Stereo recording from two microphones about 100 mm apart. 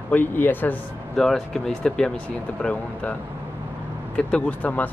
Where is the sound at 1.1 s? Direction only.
5° left (ahead or behind).